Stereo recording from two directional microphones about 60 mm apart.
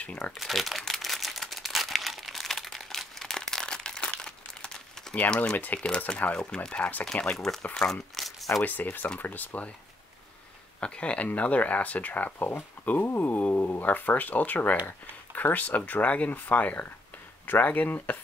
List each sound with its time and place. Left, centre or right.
0.0 s speech: left
0.4 s crumpling: centre
5.4 s speech: left
7.3 s speech: centre
7.7 s crumpling: centre
9.2 s speech: left
10.8 s speech: centre